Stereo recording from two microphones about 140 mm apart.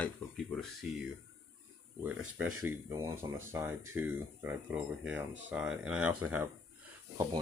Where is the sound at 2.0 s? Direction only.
10° right (ahead or behind).